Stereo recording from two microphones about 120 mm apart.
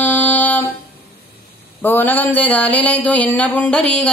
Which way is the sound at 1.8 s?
15° left (ahead or behind).